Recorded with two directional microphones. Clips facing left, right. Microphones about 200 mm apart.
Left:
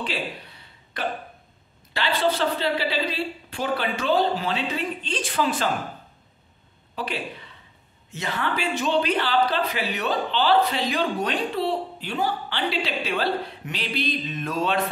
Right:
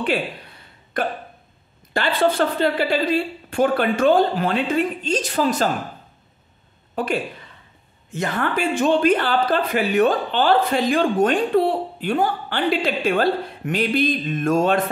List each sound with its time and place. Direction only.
0.0 s a sound: 55° right (ahead or behind)
2.0 s speech: 50° right (ahead or behind)
7.0 s speech: 50° right (ahead or behind)